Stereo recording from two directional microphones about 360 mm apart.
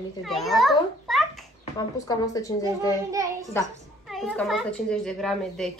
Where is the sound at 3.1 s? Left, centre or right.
Centre.